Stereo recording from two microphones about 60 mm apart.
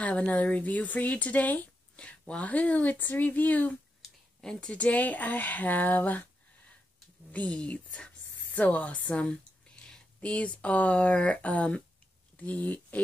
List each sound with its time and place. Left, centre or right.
0.0 s speech: left
4.0 s speech: centre; by 6.2 s left
7.3 s a woman's voice: left